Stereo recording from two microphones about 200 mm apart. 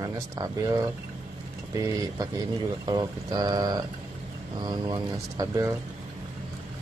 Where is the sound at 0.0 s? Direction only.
20° right (ahead or behind).